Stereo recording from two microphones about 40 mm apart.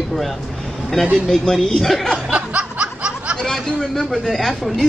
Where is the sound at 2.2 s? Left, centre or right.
Right.